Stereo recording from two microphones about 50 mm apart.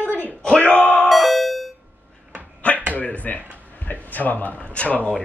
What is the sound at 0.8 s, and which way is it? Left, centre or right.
Music, centre.